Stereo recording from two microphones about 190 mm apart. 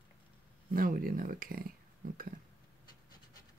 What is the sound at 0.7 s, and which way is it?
Speech, 45° right (ahead or behind).